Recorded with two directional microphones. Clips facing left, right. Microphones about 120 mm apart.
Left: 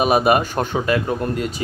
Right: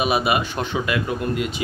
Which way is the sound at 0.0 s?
45° left (ahead or behind).